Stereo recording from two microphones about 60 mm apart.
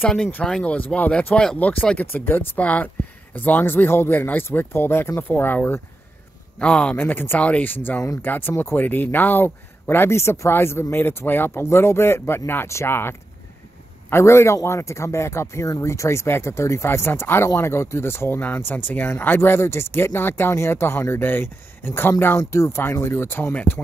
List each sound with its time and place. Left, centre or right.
0.7 s speech: left
1.1 s speech: centre
1.6 s speech: left
5.3 s speech: left
6.6 s speech: centre
7.0 s speech: left
7.3 s speech: left
8.2 s speech: left
10.5 s speech: left
14.1 s speech: left
22.4 s speech: left